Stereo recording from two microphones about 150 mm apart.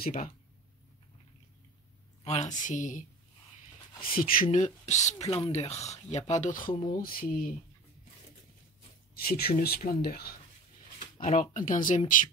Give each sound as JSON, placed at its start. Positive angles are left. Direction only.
{"t": 0.0, "sound": "speech", "side_deg": 65}
{"t": 2.2, "sound": "speech", "side_deg": 50}
{"t": 4.1, "sound": "speech", "side_deg": 70}
{"t": 6.8, "sound": "speech", "side_deg": 70}
{"t": 9.1, "sound": "speech", "side_deg": 85}
{"t": 11.1, "sound": "speech", "side_deg": 60}